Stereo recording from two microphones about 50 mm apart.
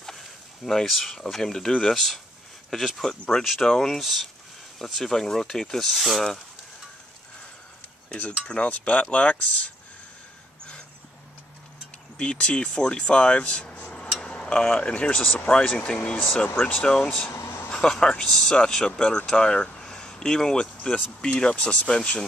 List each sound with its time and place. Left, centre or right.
0.8 s speech: centre
2.0 s speech: centre
4.0 s speech: centre
8.5 s speech: left
12.2 s speech: left
14.2 s tick-tock: centre
14.8 s speech: left
16.9 s speech: centre
17.3 s a sound: left
17.6 s a sound: centre
17.9 s speech: centre